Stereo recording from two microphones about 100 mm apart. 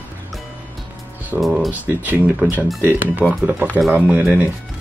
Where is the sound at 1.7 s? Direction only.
15° right (ahead or behind).